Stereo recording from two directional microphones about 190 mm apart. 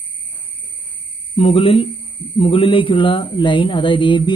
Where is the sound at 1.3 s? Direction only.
30° left (ahead or behind).